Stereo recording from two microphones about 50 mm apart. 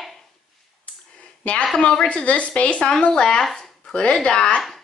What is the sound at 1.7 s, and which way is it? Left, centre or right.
A woman's voice, centre.